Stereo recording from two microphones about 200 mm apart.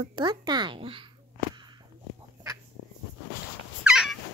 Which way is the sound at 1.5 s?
20° right (ahead or behind).